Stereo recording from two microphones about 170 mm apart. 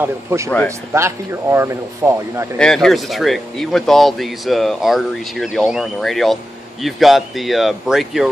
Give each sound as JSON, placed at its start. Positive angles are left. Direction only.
{"t": 0.0, "sound": "speech", "side_deg": -15}
{"t": 2.6, "sound": "speech", "side_deg": 0}